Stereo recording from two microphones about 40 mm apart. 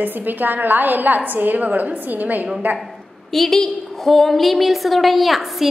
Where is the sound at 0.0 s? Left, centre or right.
Right.